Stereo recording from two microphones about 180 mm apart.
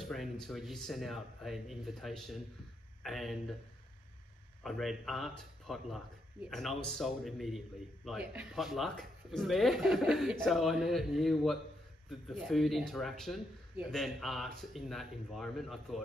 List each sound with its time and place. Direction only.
0.0 s a man's voice: centre (ahead or behind)
4.6 s a man's voice: centre (ahead or behind)